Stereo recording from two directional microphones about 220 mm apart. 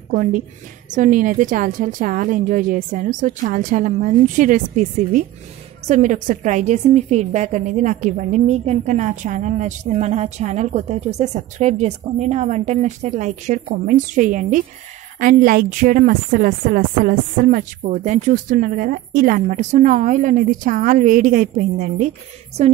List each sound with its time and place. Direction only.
0.1 s a woman's voice: 40° right (ahead or behind)